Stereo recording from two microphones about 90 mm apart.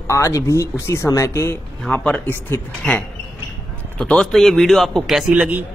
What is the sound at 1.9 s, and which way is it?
Speech, 15° left (ahead or behind).